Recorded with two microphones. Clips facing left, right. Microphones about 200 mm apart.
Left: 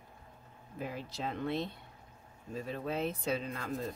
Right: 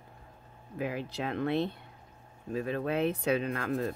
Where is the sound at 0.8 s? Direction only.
70° right (ahead or behind).